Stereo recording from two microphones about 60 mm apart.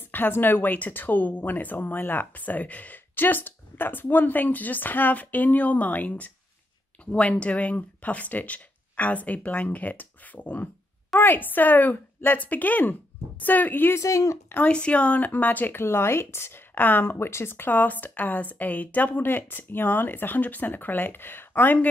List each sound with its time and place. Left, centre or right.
0.0 s speech: left
13.9 s speech: left
14.7 s speech: centre; by 21.7 s left